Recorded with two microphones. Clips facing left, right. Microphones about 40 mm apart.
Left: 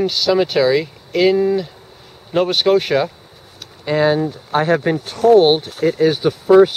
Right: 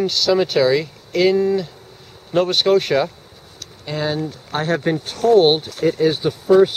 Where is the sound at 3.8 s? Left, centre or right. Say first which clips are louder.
Left 7 dB; left.